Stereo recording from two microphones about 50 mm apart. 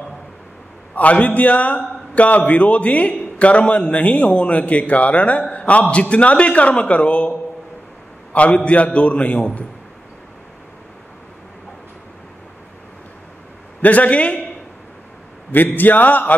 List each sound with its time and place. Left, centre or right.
0.9 s a man's voice: left
13.7 s a man's voice: left
15.5 s a man's voice: left